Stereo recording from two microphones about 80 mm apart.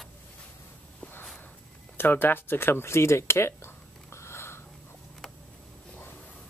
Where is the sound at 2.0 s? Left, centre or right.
Left.